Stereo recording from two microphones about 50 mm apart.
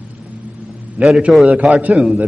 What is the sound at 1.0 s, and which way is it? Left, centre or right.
Speech, right.